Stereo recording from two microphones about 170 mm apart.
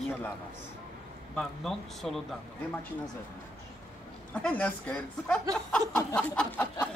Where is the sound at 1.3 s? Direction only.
Centre (ahead or behind).